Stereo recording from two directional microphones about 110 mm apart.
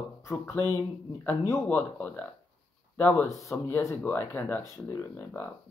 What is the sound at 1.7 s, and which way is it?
Speech, 15° left (ahead or behind).